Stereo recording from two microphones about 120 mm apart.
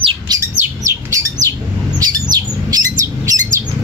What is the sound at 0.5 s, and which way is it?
Bird, 25° right (ahead or behind).